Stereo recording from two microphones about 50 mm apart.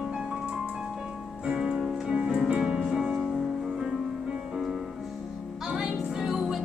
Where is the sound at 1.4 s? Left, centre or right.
Centre.